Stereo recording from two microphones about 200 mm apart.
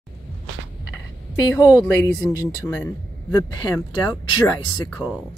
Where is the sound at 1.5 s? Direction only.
15° left (ahead or behind).